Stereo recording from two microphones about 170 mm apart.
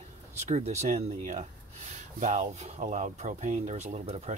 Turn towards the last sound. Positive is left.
turn(degrees=-40)  # may be behind; listen again after turning